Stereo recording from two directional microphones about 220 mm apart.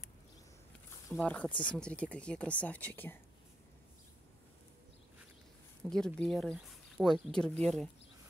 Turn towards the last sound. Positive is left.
turn(degrees=5)  # may be behind; listen again after turning